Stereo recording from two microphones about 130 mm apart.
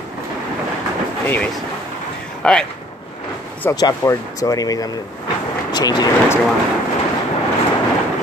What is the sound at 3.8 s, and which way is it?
Speech, 30° left (ahead or behind).